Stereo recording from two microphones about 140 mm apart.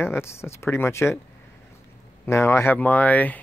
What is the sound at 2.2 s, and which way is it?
Speech, 20° left (ahead or behind).